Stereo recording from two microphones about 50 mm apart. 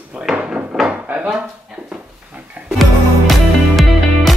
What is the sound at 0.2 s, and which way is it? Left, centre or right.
Hammer, centre.